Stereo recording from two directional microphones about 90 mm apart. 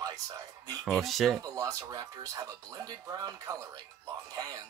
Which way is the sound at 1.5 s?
35° right (ahead or behind).